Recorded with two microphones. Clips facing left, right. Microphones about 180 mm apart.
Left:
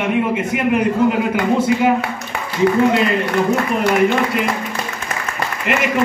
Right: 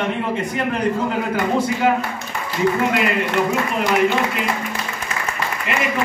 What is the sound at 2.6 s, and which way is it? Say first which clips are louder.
Speech: left 4 dB; 55° left (ahead or behind).